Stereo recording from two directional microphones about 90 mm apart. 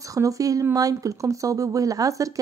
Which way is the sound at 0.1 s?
40° right (ahead or behind).